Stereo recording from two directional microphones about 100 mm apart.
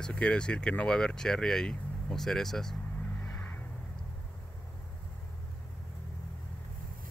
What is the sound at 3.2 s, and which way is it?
Vehicle, 15° left (ahead or behind).